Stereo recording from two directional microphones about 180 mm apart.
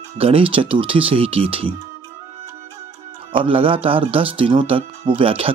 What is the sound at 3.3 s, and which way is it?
Speech, 30° right (ahead or behind).